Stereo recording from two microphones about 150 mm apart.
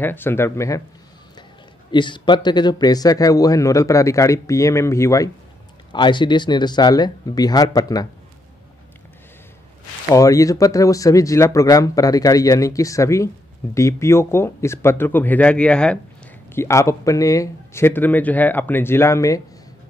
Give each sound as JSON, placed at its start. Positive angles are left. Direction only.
{"t": 0.0, "sound": "a man's voice", "side_deg": 15}
{"t": 1.9, "sound": "speech", "side_deg": 30}
{"t": 5.9, "sound": "speech", "side_deg": 30}
{"t": 10.0, "sound": "a man's voice", "side_deg": 20}
{"t": 16.5, "sound": "a man's voice", "side_deg": 20}